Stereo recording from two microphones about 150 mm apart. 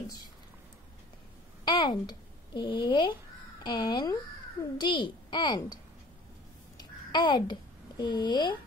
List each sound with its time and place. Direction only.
1.6 s a woman's voice: 30° left (ahead or behind)
6.8 s a sound: 30° left (ahead or behind)
8.0 s a woman's voice: 30° left (ahead or behind)